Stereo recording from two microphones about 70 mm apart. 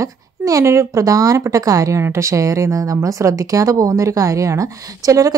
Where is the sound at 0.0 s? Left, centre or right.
Right.